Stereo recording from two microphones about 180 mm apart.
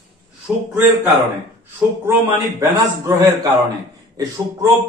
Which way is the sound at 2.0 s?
15° right (ahead or behind).